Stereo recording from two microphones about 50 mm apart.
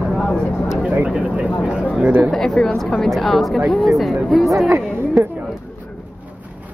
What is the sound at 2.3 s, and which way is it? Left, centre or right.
A woman's voice, centre.